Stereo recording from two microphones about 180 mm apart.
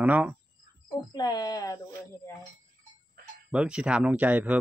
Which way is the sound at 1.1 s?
20° left (ahead or behind).